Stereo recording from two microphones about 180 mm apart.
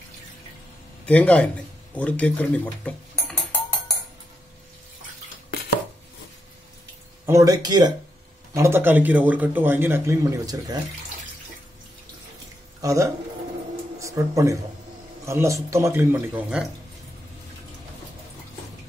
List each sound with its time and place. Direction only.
1.0 s speech: 5° left (ahead or behind)
7.2 s a man's voice: 20° right (ahead or behind)
12.8 s a man's voice: 20° right (ahead or behind)